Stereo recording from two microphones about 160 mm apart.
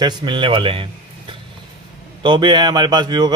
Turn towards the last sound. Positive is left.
turn(degrees=-25)  # may be behind; listen again after turning